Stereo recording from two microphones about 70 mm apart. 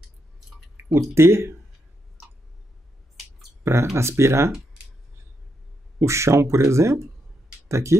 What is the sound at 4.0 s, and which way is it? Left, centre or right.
Speech, right.